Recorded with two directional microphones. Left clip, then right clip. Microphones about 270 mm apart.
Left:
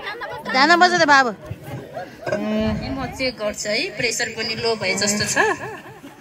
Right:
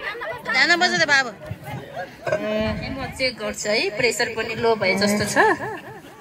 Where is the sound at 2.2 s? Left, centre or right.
Left.